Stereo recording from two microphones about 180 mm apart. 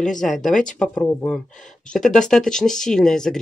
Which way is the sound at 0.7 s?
10° left (ahead or behind).